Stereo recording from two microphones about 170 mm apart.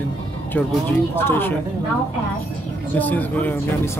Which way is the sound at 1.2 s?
15° left (ahead or behind).